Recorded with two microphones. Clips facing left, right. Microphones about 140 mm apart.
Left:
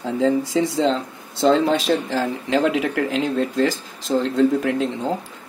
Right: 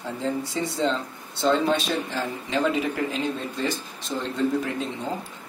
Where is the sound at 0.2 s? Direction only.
90° left.